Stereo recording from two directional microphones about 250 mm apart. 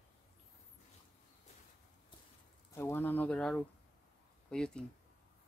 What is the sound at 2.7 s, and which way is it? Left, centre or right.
Speech, centre.